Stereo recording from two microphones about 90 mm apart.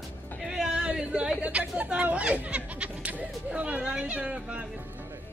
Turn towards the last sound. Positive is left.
turn(degrees=-15)  # may be behind; listen again after turning